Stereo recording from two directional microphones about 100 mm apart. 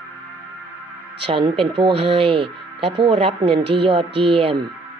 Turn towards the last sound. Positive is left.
turn(degrees=-70)  # may be behind; listen again after turning